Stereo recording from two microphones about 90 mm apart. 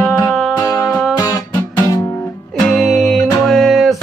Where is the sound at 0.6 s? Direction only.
40° left (ahead or behind).